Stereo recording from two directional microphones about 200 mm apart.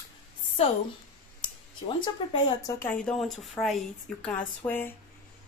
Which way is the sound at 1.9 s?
25° left (ahead or behind).